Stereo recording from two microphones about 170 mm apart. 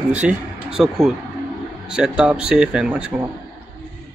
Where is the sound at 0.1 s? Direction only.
10° right (ahead or behind).